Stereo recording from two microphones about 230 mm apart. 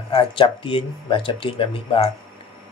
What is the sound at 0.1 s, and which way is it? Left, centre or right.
Speech, left.